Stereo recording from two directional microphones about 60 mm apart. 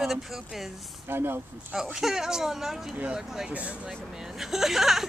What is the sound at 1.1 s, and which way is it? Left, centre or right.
Speech, right.